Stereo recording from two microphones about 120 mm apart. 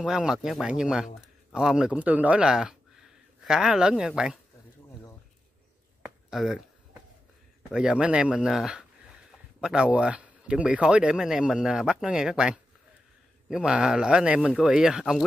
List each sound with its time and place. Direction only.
0.0 s speech: 5° right (ahead or behind)
6.0 s a sound: 5° right (ahead or behind)
7.7 s speech: 10° right (ahead or behind)